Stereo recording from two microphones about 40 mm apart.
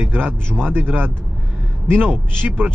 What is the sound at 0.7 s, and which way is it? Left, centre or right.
Speech, right.